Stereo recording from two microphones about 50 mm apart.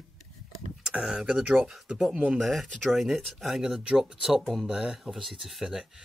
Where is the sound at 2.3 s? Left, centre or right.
Centre.